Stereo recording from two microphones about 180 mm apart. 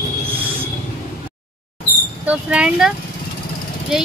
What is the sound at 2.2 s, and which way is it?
Speech, 5° right (ahead or behind).